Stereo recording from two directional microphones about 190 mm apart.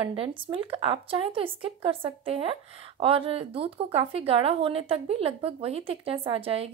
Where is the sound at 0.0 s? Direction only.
30° right (ahead or behind).